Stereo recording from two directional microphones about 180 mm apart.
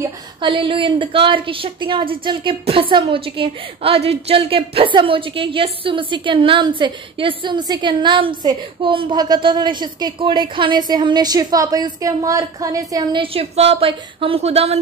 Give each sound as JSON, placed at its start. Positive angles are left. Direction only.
{"t": 0.4, "sound": "a woman's voice", "side_deg": -25}